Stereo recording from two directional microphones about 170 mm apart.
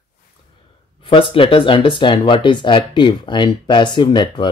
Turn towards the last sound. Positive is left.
turn(degrees=30)  # may be behind; listen again after turning